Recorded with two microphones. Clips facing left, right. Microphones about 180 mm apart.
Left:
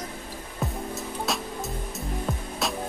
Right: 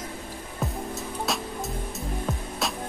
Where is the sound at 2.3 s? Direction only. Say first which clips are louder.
Left 1 dB; centre (ahead or behind).